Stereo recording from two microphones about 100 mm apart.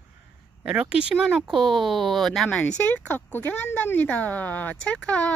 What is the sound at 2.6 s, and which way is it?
Speech, 15° left (ahead or behind).